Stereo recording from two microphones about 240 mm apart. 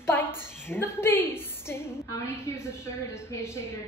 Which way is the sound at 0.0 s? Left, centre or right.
Centre.